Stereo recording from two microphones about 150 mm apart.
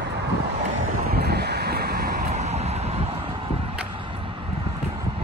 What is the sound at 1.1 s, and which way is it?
Vehicle, 90° right.